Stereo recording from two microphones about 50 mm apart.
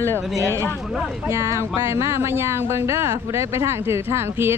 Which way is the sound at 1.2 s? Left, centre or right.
Right.